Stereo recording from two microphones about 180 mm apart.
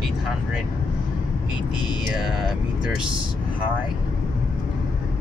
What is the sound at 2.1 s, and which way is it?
Speech, 5° right (ahead or behind).